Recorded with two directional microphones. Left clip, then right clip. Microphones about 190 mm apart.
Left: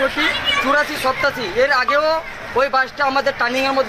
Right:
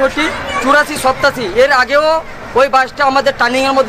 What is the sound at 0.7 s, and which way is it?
A man's voice, 30° right (ahead or behind).